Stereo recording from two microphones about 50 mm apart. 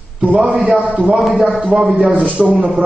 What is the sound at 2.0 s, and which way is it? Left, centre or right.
Speech, right.